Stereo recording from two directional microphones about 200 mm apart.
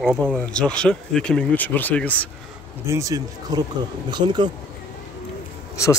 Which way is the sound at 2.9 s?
15° right (ahead or behind).